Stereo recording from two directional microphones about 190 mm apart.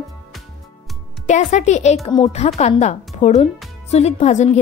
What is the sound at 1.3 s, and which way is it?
Speech, 40° left (ahead or behind).